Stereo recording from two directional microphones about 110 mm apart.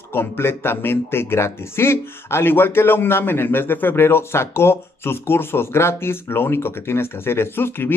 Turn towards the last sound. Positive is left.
turn(degrees=20)  # may be behind; listen again after turning